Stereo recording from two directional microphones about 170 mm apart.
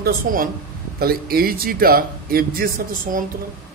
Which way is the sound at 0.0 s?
55° right (ahead or behind).